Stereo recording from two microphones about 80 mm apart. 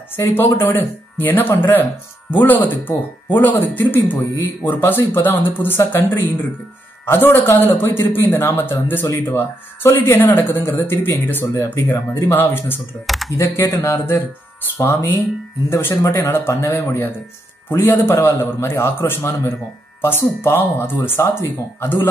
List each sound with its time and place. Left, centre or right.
0.3 s speech: left
11.9 s speech: left
13.0 s speech: centre
13.4 s speech: left